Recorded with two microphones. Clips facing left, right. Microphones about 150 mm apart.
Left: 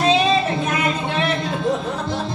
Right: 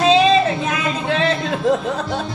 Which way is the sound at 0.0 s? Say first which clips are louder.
Right 4 dB; 90° right.